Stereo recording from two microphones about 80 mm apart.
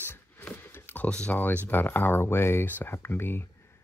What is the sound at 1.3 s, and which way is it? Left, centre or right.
Speech, left.